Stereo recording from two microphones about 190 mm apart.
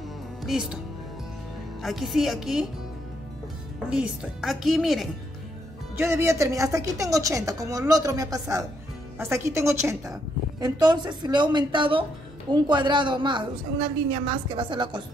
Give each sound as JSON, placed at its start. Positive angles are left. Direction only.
{"t": 0.4, "sound": "speech", "side_deg": -5}
{"t": 1.8, "sound": "speech", "side_deg": 0}
{"t": 3.9, "sound": "speech", "side_deg": -5}
{"t": 5.9, "sound": "a woman's voice", "side_deg": -15}